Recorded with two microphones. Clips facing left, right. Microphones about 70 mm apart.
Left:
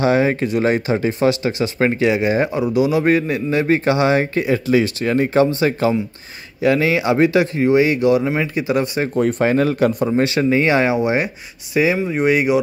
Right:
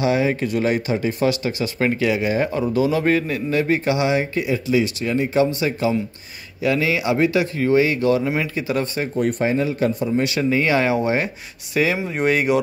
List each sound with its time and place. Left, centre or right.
0.0 s speech: left
2.6 s speech: centre; by 5.9 s left
6.6 s speech: left
9.1 s speech: left
9.9 s speech: left
10.2 s speech: left
11.7 s speech: centre